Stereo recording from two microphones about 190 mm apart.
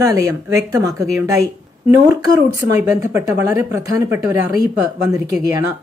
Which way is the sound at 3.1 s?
15° right (ahead or behind).